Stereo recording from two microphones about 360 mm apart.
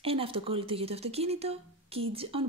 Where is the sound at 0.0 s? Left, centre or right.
Centre.